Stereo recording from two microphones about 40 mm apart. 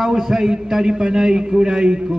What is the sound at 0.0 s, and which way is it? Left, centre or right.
A man's voice, centre.